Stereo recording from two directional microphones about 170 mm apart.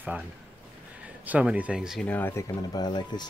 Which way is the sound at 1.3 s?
10° right (ahead or behind).